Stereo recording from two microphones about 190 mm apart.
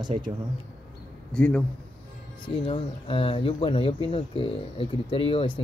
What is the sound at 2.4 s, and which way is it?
Speech, 25° left (ahead or behind).